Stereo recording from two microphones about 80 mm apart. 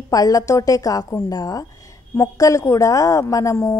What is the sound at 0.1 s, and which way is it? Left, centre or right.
A woman's voice, left.